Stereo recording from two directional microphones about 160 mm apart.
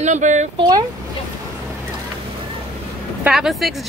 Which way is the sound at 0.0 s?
50° right (ahead or behind).